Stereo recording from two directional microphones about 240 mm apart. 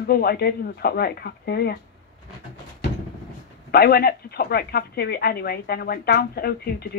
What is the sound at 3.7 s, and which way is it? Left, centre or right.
Speech, left.